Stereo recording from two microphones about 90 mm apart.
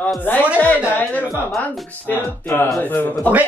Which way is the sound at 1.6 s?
20° left (ahead or behind).